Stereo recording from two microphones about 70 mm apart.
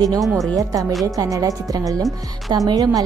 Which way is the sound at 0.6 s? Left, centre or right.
Right.